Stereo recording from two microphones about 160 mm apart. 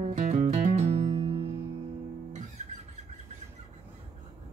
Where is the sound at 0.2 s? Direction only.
50° right (ahead or behind).